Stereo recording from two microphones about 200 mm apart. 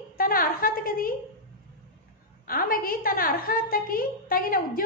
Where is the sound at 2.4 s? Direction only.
45° left (ahead or behind).